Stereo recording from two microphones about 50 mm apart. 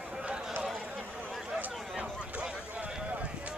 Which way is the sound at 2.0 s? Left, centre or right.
Right.